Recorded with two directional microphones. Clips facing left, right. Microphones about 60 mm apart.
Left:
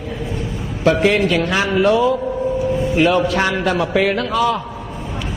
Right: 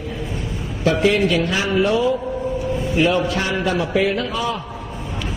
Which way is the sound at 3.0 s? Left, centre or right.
Left.